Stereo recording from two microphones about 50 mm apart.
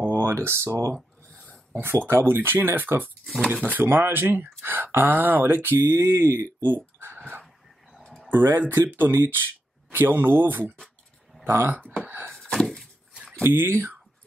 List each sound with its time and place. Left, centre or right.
0.1 s speech: right
1.7 s speech: right
3.5 s speech: right
3.8 s speech: right
5.9 s speech: right
7.2 s a sound: right
8.3 s speech: right
11.4 s speech: right
11.9 s speech: right
12.3 s a sound: centre
13.5 s speech: right